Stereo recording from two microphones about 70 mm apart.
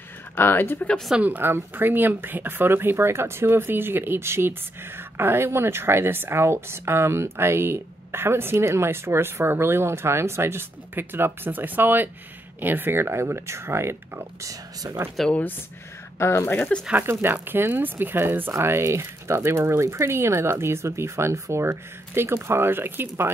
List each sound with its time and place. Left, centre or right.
0.4 s speech: left
1.2 s speech: right
14.5 s speech: right
15.2 s speech: centre
16.2 s speech: left
16.9 s speech: right